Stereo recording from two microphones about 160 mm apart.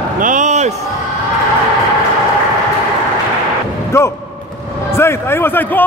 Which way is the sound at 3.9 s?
15° left (ahead or behind).